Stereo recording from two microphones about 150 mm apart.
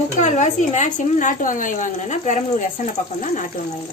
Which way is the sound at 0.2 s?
55° left (ahead or behind).